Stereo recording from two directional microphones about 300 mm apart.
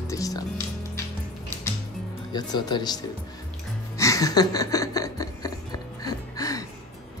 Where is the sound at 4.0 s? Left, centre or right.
Centre.